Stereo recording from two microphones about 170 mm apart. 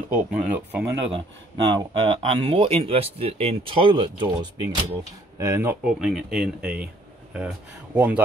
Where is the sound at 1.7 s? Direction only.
30° right (ahead or behind).